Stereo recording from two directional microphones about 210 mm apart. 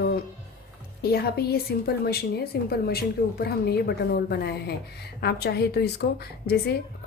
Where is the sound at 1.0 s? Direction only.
50° left (ahead or behind).